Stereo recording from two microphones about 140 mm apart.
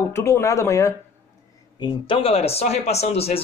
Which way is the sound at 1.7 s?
35° left (ahead or behind).